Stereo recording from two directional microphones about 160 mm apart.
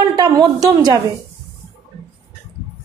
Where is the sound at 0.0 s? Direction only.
25° right (ahead or behind).